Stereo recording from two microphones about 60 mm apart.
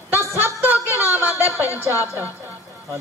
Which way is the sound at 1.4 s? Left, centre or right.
Right.